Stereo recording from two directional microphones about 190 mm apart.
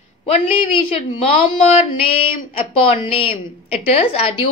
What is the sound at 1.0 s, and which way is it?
Speech, 30° left (ahead or behind).